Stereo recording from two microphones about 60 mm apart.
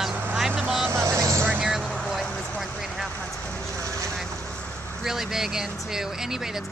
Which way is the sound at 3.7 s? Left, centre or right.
Right.